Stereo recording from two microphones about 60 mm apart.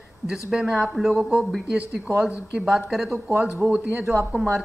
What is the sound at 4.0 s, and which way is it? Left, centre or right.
Speech, right.